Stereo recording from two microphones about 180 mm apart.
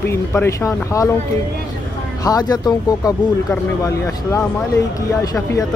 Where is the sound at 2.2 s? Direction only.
20° left (ahead or behind).